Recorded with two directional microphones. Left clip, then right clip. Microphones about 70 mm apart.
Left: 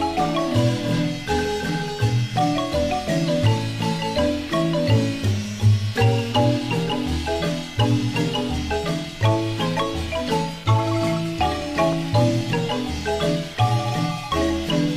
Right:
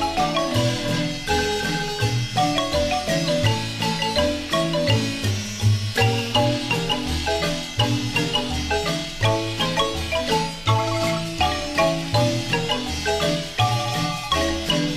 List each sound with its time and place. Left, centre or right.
0.0 s music: right
2.3 s marimba: right
14.3 s marimba: right